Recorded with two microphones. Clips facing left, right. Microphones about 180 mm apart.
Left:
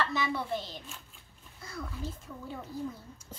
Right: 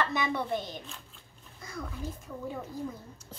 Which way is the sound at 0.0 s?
20° right (ahead or behind).